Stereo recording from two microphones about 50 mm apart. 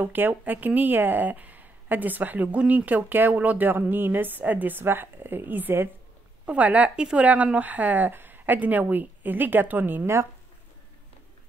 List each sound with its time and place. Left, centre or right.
0.0 s speech: right
6.4 s speech: right
7.6 s speech: right